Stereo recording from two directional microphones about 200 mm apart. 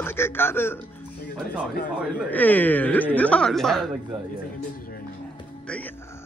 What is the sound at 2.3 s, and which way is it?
A man's voice, 10° left (ahead or behind).